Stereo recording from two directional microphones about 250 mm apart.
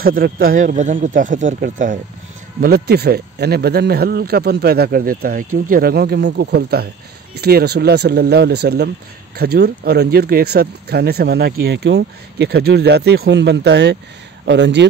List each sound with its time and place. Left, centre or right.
0.0 s speech: right